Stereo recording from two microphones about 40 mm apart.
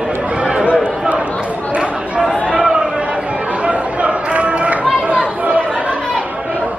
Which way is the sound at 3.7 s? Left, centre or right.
Right.